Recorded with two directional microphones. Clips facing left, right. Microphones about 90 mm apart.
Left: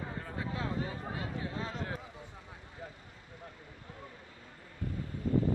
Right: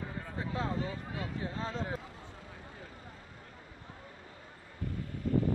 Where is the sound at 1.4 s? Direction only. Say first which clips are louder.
Right 2 dB; 35° right (ahead or behind).